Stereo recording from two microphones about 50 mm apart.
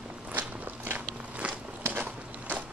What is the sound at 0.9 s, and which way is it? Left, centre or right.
Biting, right.